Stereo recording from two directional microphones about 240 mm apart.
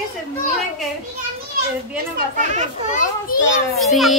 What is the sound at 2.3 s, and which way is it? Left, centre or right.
Speech, right.